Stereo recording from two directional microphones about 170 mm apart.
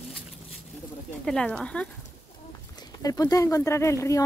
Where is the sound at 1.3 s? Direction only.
5° left (ahead or behind).